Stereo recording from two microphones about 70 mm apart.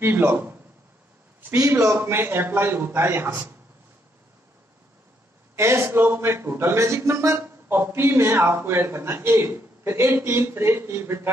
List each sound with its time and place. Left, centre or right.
0.0 s a man's voice: right
1.5 s a man's voice: right
5.6 s a man's voice: right